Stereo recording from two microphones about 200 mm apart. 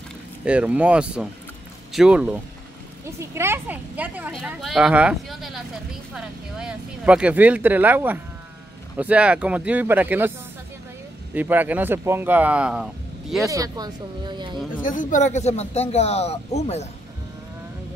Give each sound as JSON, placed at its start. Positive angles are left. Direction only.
{"t": 0.5, "sound": "a woman's voice", "side_deg": -5}
{"t": 11.3, "sound": "a woman's voice", "side_deg": -10}
{"t": 13.5, "sound": "speech", "side_deg": -20}
{"t": 14.8, "sound": "speech", "side_deg": 40}